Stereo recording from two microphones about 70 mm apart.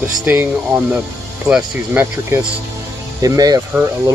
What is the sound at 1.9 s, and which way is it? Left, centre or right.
Speech, right.